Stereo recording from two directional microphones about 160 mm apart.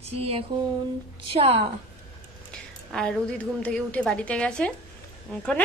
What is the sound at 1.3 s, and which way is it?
Speech, 40° right (ahead or behind).